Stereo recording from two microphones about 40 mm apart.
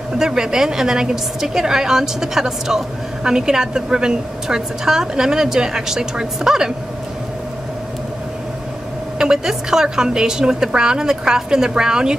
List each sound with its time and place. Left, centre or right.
0.2 s a woman's voice: centre
9.2 s a woman's voice: centre